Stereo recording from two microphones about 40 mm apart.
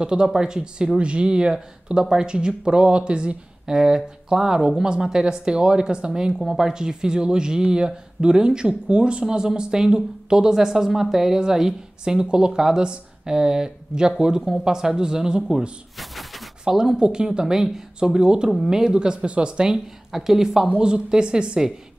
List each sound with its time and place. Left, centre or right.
0.0 s speech: centre
3.7 s speech: centre
16.0 s a sound: centre
16.6 s speech: centre
18.9 s speech: right
20.1 s speech: centre
20.7 s speech: right